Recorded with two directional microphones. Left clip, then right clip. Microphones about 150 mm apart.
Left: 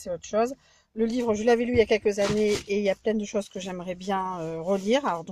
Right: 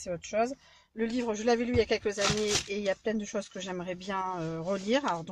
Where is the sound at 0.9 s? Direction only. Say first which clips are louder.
Left 6 dB; 10° left (ahead or behind).